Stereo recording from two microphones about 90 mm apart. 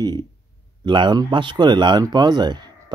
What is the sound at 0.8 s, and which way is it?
Speech, 65° right (ahead or behind).